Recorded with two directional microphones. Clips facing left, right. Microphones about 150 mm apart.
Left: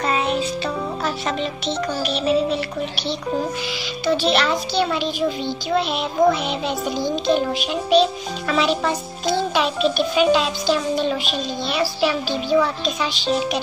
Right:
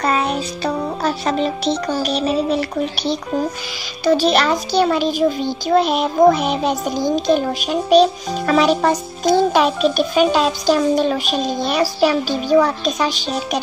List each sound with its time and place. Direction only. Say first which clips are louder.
0.0 s a child's voice: right 2 dB; 40° right (ahead or behind)